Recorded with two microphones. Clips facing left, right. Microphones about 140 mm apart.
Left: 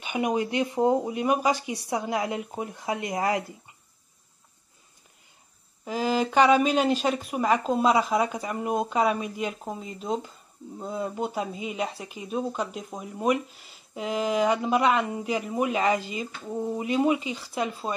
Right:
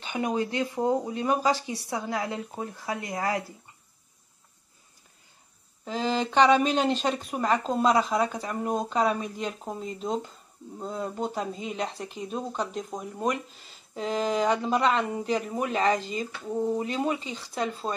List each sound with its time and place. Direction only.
0.0 s speech: 15° left (ahead or behind)
5.9 s speech: 10° left (ahead or behind)